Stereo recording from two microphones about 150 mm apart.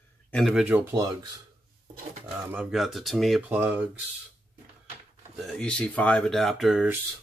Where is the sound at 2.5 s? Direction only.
5° right (ahead or behind).